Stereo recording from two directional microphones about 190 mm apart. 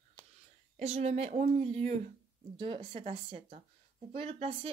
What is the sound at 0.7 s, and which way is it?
Speech, 35° right (ahead or behind).